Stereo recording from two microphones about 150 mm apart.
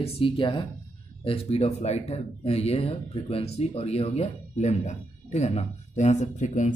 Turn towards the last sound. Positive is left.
turn(degrees=50)  # may be behind; listen again after turning